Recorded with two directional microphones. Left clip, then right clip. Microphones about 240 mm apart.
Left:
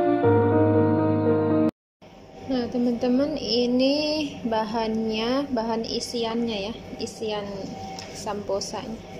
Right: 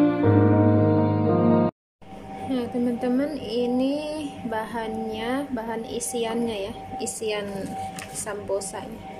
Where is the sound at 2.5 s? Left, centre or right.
Centre.